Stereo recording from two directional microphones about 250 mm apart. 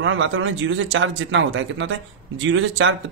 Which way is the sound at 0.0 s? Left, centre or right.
Right.